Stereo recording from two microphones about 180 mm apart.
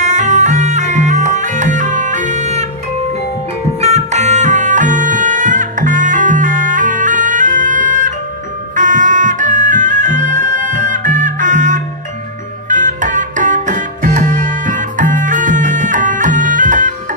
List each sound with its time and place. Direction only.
0.0 s music: 40° right (ahead or behind)
3.8 s music: 40° right (ahead or behind)